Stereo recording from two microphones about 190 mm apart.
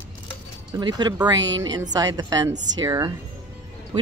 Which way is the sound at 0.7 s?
20° right (ahead or behind).